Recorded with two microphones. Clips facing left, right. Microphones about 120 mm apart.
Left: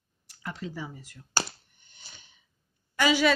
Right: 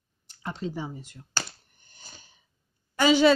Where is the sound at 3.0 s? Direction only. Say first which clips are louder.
Right 4 dB; 30° right (ahead or behind).